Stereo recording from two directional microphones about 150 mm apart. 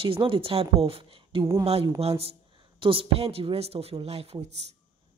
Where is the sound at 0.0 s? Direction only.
35° right (ahead or behind).